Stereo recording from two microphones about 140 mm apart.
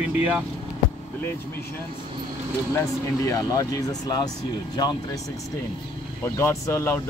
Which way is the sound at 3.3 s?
25° left (ahead or behind).